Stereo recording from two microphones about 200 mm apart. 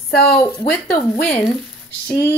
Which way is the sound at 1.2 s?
5° left (ahead or behind).